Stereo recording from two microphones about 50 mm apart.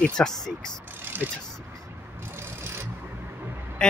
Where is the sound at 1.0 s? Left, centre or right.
Right.